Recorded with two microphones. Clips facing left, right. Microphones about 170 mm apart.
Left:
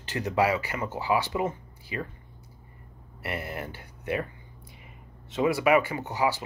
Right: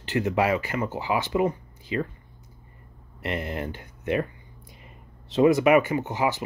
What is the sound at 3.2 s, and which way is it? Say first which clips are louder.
Speech: right 4 dB; 20° right (ahead or behind).